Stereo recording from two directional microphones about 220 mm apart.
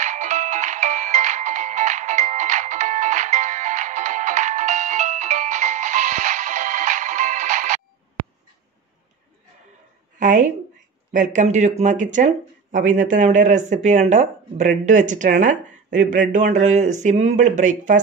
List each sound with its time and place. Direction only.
0.0 s music: 35° right (ahead or behind)
10.1 s a sound: 35° right (ahead or behind)
11.1 s speech: 35° right (ahead or behind)